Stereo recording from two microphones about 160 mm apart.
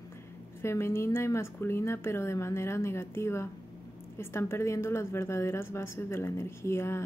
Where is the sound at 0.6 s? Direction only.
15° left (ahead or behind).